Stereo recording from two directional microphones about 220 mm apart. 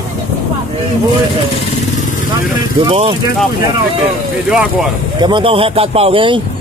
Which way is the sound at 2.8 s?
25° right (ahead or behind).